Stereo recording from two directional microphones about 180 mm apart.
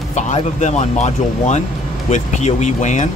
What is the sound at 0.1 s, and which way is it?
Speech, 40° left (ahead or behind).